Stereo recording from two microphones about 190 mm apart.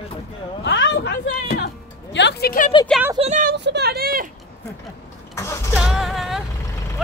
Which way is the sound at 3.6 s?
65° right (ahead or behind).